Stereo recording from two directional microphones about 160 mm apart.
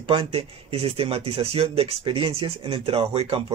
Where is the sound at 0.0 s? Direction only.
35° right (ahead or behind).